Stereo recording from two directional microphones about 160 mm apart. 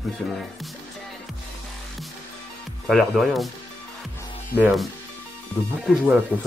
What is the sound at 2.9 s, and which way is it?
Speech, centre (ahead or behind).